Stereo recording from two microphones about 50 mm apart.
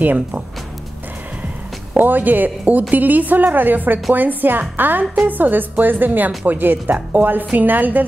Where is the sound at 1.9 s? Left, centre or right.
Right.